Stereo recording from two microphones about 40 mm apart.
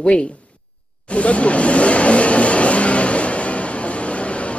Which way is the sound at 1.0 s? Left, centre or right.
Left.